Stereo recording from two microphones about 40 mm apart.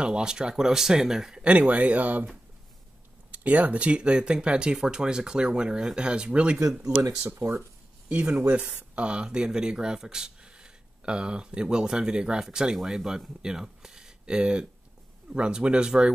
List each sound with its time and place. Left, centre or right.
0.0 s speech: centre
1.4 s speech: right
3.3 s speech: right
7.2 s speech: right
8.1 s speech: right; by 13.2 s centre
13.4 s a sound: centre
14.2 s speech: right